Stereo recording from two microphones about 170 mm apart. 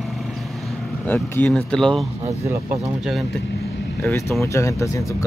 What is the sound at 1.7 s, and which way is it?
Speech, 5° left (ahead or behind).